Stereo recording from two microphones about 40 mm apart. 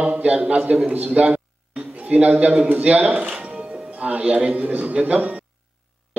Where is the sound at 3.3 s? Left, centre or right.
Right.